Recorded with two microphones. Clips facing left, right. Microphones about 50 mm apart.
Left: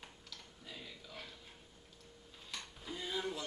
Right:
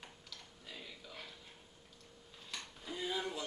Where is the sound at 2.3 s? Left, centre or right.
Centre.